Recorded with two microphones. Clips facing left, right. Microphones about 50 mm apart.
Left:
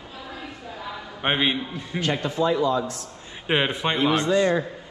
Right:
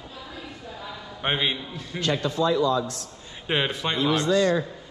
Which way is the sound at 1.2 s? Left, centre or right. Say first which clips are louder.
Left 3 dB; centre.